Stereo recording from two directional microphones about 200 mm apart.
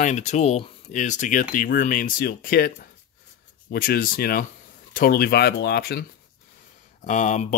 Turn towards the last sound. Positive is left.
turn(degrees=40)  # may be behind; listen again after turning